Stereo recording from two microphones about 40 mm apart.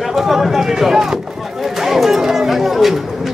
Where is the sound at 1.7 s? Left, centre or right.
Centre.